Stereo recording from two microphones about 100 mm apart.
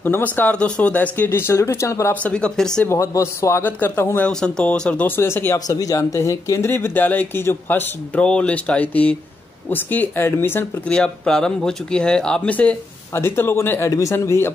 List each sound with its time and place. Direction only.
0.0 s speech: 20° left (ahead or behind)
2.2 s speech: 10° left (ahead or behind)
2.9 s speech: 30° left (ahead or behind)
4.3 s speech: 5° left (ahead or behind); by 6.7 s 30° left (ahead or behind)
6.7 s speech: 20° left (ahead or behind)
10.9 s speech: 5° left (ahead or behind); by 14.5 s 25° left (ahead or behind)